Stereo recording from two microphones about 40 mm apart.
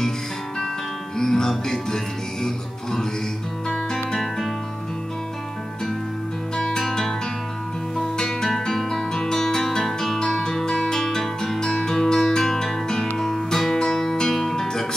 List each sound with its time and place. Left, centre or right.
1.1 s music: centre
3.6 s guitar: centre
6.5 s music: centre
8.0 s guitar: centre
13.2 s music: centre